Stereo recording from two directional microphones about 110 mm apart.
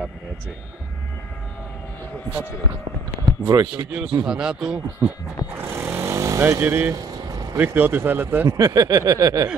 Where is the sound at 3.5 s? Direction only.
40° right (ahead or behind).